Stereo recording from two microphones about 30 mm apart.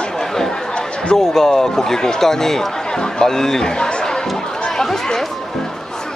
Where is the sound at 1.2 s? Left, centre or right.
Centre.